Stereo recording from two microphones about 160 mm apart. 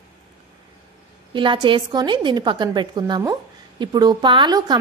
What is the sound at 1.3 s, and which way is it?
A woman's voice, 30° right (ahead or behind).